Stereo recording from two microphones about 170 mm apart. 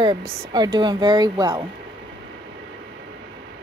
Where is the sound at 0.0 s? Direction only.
25° right (ahead or behind).